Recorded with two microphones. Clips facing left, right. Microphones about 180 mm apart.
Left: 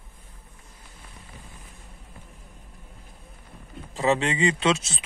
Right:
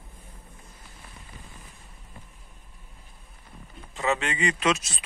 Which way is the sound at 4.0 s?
30° left (ahead or behind).